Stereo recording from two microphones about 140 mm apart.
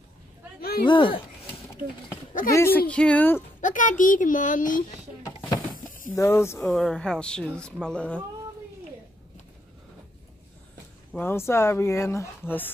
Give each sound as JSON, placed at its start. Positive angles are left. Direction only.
{"t": 0.6, "sound": "a sound", "side_deg": 90}
{"t": 0.8, "sound": "speech", "side_deg": 35}
{"t": 2.5, "sound": "speech", "side_deg": 15}
{"t": 3.6, "sound": "a child's voice", "side_deg": 70}
{"t": 6.1, "sound": "speech", "side_deg": 20}
{"t": 6.6, "sound": "speech", "side_deg": 5}
{"t": 11.1, "sound": "speech", "side_deg": 15}